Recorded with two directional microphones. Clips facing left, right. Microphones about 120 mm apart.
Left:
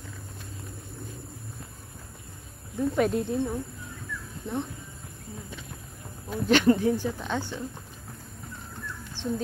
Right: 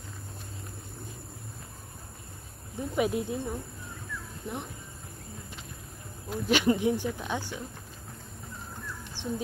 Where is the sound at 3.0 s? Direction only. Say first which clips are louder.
Left 1 dB; 10° right (ahead or behind).